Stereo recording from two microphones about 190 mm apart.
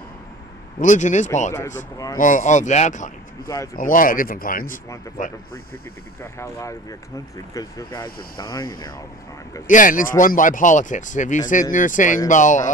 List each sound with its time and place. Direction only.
0.7 s speech: 40° left (ahead or behind)
3.4 s speech: 20° left (ahead or behind)
3.7 s speech: 45° left (ahead or behind)
6.3 s speech: 15° left (ahead or behind)
9.7 s speech: 45° left (ahead or behind)